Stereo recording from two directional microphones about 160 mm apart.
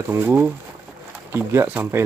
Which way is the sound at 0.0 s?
15° right (ahead or behind).